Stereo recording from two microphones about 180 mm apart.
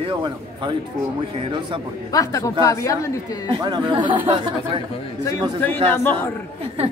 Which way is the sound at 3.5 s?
25° right (ahead or behind).